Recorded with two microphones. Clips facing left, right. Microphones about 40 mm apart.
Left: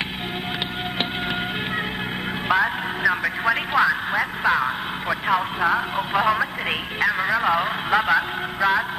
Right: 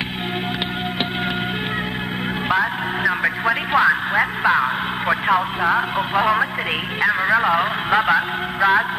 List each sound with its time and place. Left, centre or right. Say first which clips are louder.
2.4 s music: even; centre
3.2 s music: right 2 dB; centre
5.3 s speech: right 1 dB; centre